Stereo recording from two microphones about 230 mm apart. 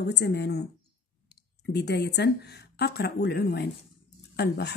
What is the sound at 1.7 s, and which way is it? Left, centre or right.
A woman's voice, left.